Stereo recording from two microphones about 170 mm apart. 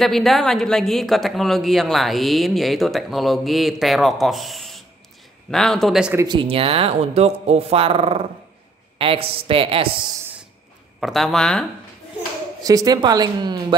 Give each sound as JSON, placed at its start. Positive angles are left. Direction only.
{"t": 0.0, "sound": "a man's voice", "side_deg": 0}
{"t": 6.2, "sound": "speech", "side_deg": -30}
{"t": 11.0, "sound": "a man's voice", "side_deg": 0}
{"t": 12.6, "sound": "speech", "side_deg": -20}